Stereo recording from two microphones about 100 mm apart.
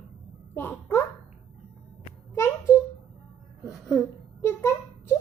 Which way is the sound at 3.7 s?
5° right (ahead or behind).